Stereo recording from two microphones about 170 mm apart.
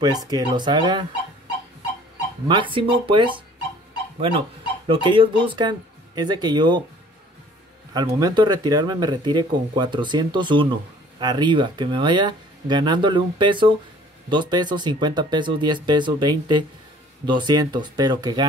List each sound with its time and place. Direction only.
0.0 s speech: 25° right (ahead or behind)
2.4 s speech: 30° right (ahead or behind)
4.8 s speech: 30° right (ahead or behind)
7.9 s speech: 25° right (ahead or behind)